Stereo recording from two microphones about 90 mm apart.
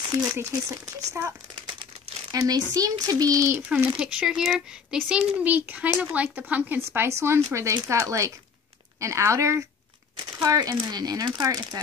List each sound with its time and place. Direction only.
0.2 s a child's voice: 25° right (ahead or behind)
0.5 s speech: 40° right (ahead or behind)
2.3 s speech: 45° right (ahead or behind)
3.9 s speech: 10° right (ahead or behind)
5.4 s a child's voice: 20° right (ahead or behind); by 11.8 s 45° right (ahead or behind)